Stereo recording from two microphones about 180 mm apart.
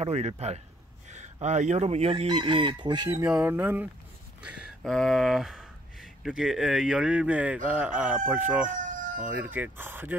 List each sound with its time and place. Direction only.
0.0 s speech: 35° right (ahead or behind)
1.0 s chicken: 40° right (ahead or behind)
3.1 s speech: 10° right (ahead or behind)
8.6 s fowl: 45° right (ahead or behind)
9.2 s speech: 10° right (ahead or behind)